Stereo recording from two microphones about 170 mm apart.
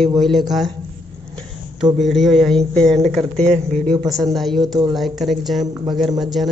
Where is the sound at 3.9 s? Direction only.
20° right (ahead or behind).